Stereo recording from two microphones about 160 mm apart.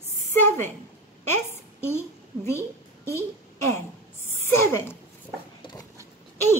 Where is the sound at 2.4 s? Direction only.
15° left (ahead or behind).